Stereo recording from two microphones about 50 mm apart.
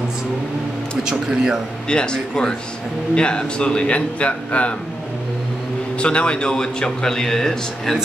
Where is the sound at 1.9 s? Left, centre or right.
Centre.